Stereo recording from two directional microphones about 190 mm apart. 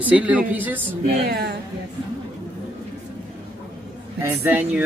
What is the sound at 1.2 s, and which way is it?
Speech, 55° right (ahead or behind).